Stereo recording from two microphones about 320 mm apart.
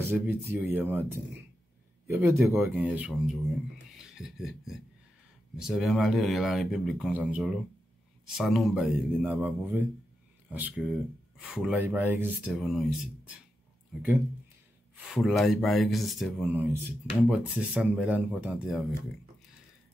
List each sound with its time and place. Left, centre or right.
0.0 s speech: centre
2.0 s speech: centre